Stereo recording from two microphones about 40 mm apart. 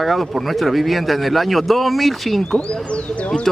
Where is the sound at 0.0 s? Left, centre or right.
Centre.